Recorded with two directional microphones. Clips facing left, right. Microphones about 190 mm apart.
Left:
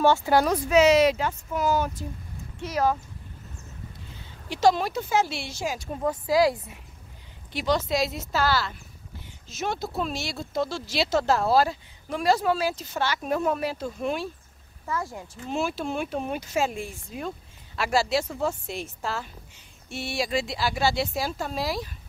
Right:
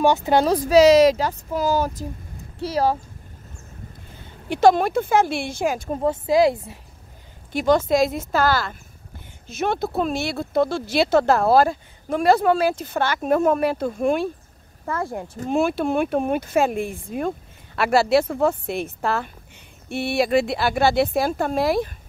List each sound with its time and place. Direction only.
0.0 s speech: 20° right (ahead or behind)
0.6 s speech: 35° right (ahead or behind)
4.1 s speech: 55° right (ahead or behind)
5.9 s speech: 25° right (ahead or behind)
7.5 s speech: 50° right (ahead or behind)